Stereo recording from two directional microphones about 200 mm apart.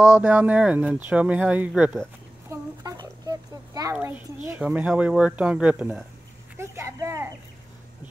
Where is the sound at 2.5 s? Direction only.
15° right (ahead or behind).